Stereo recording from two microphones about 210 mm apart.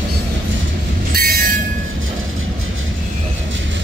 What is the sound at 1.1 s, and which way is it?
Train, 45° right (ahead or behind).